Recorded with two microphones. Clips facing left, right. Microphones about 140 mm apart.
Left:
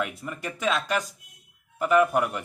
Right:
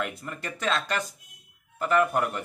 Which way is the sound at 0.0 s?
10° left (ahead or behind).